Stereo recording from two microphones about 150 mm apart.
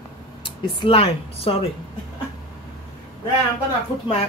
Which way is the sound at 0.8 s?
40° left (ahead or behind).